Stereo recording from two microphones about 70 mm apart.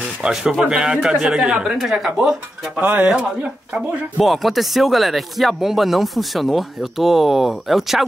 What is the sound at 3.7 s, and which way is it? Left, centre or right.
Speech, centre.